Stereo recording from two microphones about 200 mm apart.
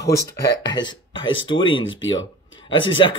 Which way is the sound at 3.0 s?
25° left (ahead or behind).